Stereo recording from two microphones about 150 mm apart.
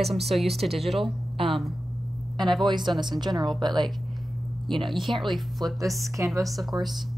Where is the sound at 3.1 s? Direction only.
30° right (ahead or behind).